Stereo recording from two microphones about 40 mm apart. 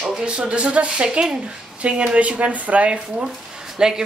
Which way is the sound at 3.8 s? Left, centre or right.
Centre.